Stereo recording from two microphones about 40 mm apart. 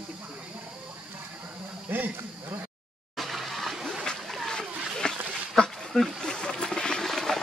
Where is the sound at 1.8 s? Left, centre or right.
Right.